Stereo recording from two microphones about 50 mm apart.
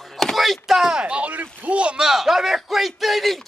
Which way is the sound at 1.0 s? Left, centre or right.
Right.